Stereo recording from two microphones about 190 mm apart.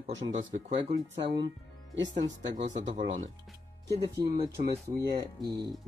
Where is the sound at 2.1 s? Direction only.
40° right (ahead or behind).